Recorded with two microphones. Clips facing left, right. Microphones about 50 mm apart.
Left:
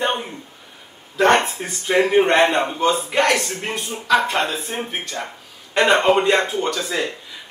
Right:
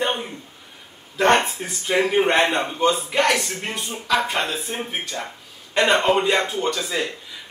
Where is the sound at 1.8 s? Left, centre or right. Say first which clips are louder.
Left 3 dB; centre.